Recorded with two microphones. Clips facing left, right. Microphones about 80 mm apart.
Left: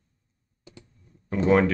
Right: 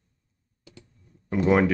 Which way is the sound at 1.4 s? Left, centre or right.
Centre.